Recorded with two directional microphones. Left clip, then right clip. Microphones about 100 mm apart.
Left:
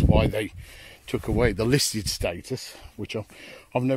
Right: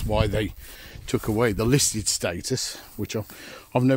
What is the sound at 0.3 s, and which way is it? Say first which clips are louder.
Speech: right 1 dB; 45° left (ahead or behind).